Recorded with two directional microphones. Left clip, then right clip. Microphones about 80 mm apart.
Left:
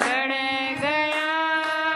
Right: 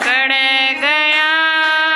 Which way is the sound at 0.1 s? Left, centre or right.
Centre.